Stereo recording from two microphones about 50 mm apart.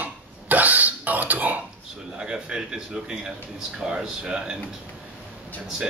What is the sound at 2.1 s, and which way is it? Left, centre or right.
A man's voice, centre.